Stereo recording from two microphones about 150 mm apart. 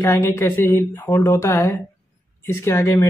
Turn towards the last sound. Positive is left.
turn(degrees=20)  # may be behind; listen again after turning